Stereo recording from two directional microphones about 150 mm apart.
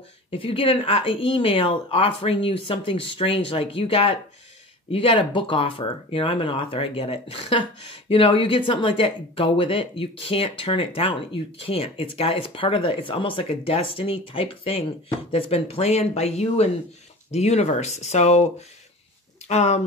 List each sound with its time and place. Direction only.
0.3 s speech: 35° left (ahead or behind)
19.4 s speech: 45° left (ahead or behind)